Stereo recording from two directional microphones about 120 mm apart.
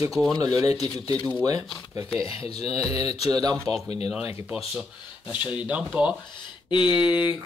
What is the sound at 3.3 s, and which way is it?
Speech, 30° right (ahead or behind).